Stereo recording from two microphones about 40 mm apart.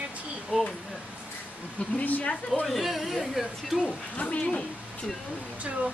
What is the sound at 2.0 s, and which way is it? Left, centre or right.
Speech, left.